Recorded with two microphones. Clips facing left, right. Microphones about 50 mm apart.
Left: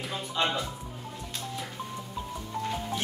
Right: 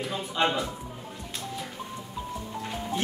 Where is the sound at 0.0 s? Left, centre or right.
Centre.